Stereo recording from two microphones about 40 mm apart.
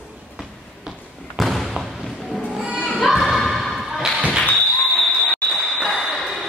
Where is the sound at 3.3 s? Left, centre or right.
Centre.